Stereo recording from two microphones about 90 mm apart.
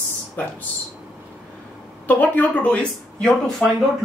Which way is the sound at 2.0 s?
20° left (ahead or behind).